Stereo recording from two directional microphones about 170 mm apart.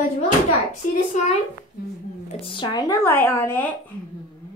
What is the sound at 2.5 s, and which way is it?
Speech, 25° left (ahead or behind).